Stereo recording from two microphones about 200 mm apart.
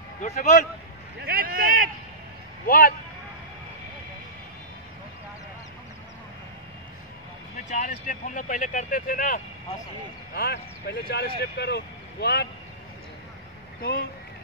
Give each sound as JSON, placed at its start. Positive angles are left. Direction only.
{"t": 0.2, "sound": "speech", "side_deg": 40}
{"t": 1.2, "sound": "speech", "side_deg": -50}
{"t": 2.6, "sound": "speech", "side_deg": 45}
{"t": 7.6, "sound": "speech", "side_deg": 40}
{"t": 13.7, "sound": "speech", "side_deg": 45}